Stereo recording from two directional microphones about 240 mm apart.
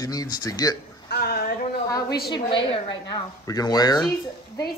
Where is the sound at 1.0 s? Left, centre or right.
Left.